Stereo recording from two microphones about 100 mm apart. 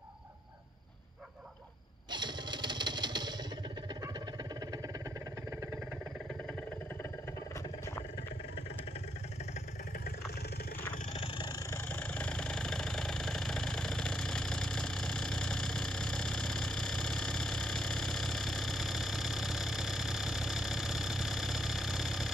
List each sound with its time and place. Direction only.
2.0 s a sound: 50° right (ahead or behind)
11.1 s vehicle: 70° left (ahead or behind)
11.9 s vehicle: 15° left (ahead or behind); by 22.3 s centre (ahead or behind)